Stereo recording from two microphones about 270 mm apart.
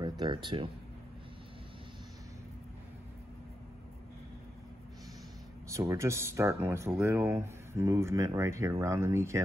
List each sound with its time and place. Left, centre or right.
0.0 s speech: centre
5.8 s speech: centre